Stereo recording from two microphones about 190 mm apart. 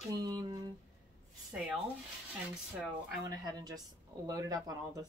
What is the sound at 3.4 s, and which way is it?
Speech, 20° right (ahead or behind).